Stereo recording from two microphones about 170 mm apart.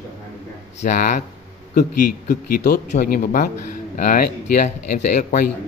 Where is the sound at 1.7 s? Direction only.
65° left (ahead or behind).